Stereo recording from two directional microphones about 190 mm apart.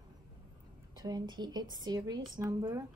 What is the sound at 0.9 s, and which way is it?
A woman's voice, 20° right (ahead or behind).